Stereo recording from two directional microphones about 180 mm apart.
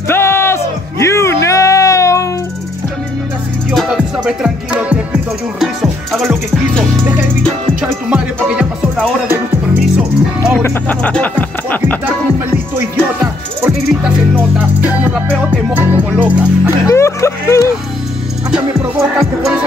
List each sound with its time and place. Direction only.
0.1 s music: 15° left (ahead or behind)
3.7 s music: 5° right (ahead or behind)
7.8 s music: 5° right (ahead or behind)
10.6 s speech: 10° left (ahead or behind)
12.7 s music: 10° right (ahead or behind)
16.8 s speech: 15° left (ahead or behind)
19.1 s music: centre (ahead or behind)